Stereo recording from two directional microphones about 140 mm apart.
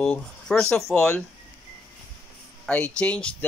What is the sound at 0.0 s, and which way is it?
Speech, 5° left (ahead or behind).